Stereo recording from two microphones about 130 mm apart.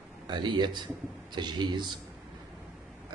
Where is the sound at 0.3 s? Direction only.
35° right (ahead or behind).